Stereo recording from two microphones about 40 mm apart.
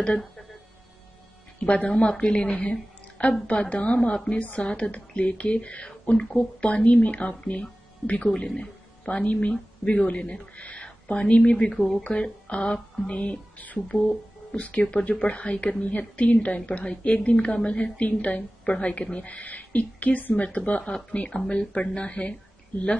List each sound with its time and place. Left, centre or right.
1.6 s a woman's voice: left
8.5 s music: left
9.3 s speech: left
11.7 s speech: centre
12.0 s speech: left
20.4 s a woman's voice: left